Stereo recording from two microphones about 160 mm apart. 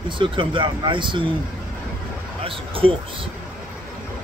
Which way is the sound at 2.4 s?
35° right (ahead or behind).